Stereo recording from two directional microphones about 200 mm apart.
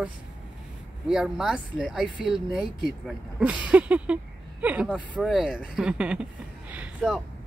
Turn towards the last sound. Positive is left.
turn(degrees=-5)  # may be behind; listen again after turning